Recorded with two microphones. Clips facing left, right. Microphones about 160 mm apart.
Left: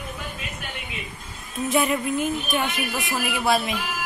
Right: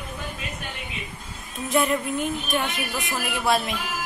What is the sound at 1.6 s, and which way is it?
Speech, centre (ahead or behind).